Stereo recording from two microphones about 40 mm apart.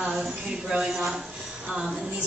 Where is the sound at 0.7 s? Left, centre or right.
Centre.